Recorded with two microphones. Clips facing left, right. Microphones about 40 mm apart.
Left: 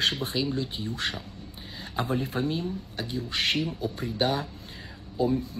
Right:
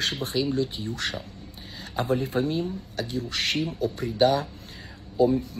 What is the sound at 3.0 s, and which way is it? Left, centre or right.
Speech, centre.